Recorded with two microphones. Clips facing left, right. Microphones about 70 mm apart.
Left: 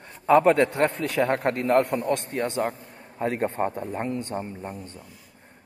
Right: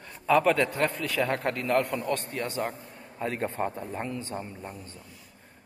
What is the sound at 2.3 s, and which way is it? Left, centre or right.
Speech, left.